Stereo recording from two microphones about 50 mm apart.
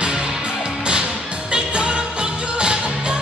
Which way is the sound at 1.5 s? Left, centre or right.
Centre.